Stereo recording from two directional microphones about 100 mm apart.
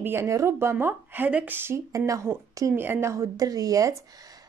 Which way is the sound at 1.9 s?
35° right (ahead or behind).